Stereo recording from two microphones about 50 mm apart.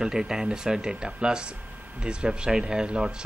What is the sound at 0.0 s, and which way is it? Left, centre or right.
Speech, centre.